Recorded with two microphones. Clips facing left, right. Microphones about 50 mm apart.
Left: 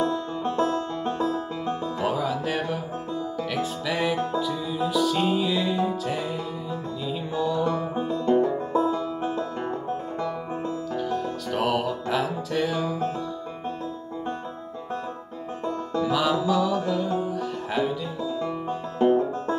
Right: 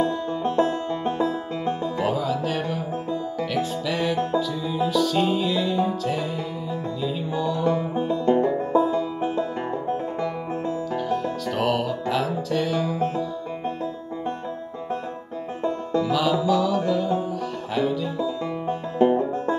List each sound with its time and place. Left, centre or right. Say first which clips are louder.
0.0 s music: right 2 dB; centre
0.6 s music: right 1 dB; centre
2.0 s music: right 1 dB; centre
7.3 s music: right 1 dB; centre
7.7 s music: right 3 dB; right
8.1 s music: right 1 dB; centre
11.0 s music: right 2 dB; centre
15.9 s music: right 1 dB; centre
18.4 s music: right 2 dB; centre